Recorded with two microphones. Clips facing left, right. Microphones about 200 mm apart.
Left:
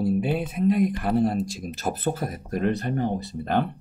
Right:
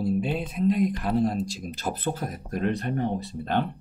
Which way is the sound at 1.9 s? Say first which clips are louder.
Left 3 dB; 5° left (ahead or behind).